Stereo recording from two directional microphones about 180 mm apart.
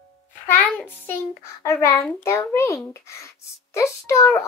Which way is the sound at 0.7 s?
10° left (ahead or behind).